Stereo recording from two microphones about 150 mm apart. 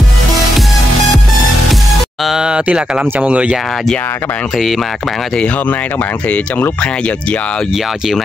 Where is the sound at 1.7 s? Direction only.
Centre (ahead or behind).